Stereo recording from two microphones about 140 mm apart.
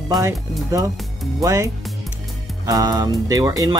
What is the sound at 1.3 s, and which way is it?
Speech, 20° right (ahead or behind).